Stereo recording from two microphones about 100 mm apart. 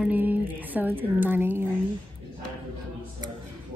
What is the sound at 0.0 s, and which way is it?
Music, 15° right (ahead or behind).